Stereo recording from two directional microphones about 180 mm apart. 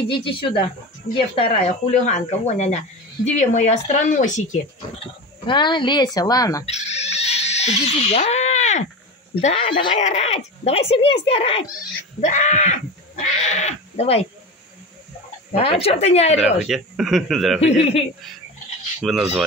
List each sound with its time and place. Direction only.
0.1 s a man's voice: 30° left (ahead or behind)
5.5 s a man's voice: 25° left (ahead or behind)
6.6 s a sound: 35° left (ahead or behind)
9.3 s a man's voice: 35° left (ahead or behind)
9.9 s speech: 40° left (ahead or behind)
12.2 s a sound: 45° left (ahead or behind)
15.5 s speech: 35° left (ahead or behind)
16.6 s speech: centre (ahead or behind)
17.6 s speech: 35° left (ahead or behind)
19.0 s speech: centre (ahead or behind)